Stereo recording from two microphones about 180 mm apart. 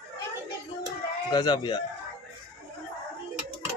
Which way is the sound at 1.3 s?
25° left (ahead or behind).